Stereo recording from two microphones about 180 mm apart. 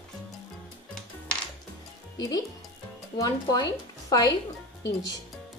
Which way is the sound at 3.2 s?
20° left (ahead or behind).